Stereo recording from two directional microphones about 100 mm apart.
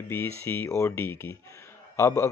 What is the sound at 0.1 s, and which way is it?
Speech, 25° left (ahead or behind).